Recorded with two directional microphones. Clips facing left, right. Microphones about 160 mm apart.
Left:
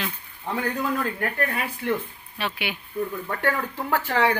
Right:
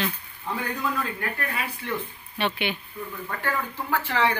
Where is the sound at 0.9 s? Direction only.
45° left (ahead or behind).